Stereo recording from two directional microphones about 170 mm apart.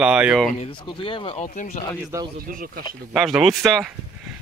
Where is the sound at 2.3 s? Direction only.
60° right (ahead or behind).